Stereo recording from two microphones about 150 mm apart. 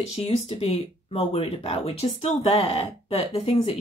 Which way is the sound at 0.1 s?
40° left (ahead or behind).